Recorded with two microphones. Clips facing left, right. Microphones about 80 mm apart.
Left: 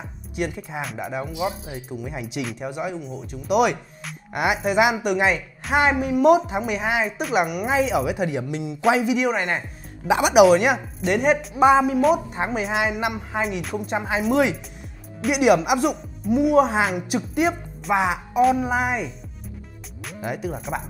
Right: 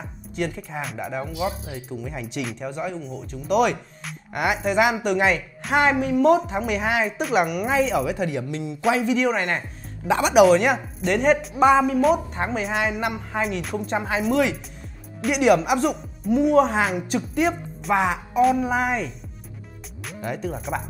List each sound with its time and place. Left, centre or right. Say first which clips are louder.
0.4 s a woman's voice: even; centre
12.0 s a woman's voice: left 1 dB; centre
14.3 s a woman's voice: left 2 dB; centre